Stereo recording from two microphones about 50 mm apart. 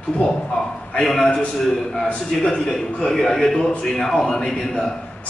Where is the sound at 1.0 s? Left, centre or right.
Centre.